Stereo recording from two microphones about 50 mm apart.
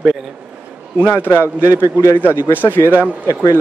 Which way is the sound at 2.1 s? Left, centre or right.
Left.